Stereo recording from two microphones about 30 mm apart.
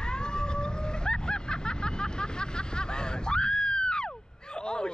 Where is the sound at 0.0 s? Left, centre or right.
Left.